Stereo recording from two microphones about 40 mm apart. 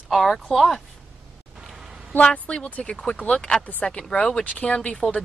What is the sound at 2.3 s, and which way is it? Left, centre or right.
Speech, left.